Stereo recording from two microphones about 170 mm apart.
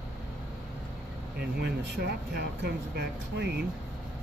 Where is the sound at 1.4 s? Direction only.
75° right (ahead or behind).